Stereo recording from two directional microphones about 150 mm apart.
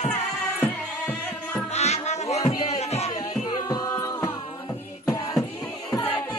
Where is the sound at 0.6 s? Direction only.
10° left (ahead or behind).